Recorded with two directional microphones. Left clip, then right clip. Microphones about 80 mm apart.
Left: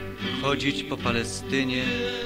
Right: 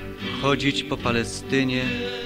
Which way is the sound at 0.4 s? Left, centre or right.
Right.